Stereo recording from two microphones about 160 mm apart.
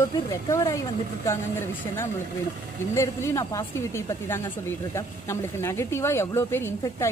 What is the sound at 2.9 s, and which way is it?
A woman's voice, 15° left (ahead or behind).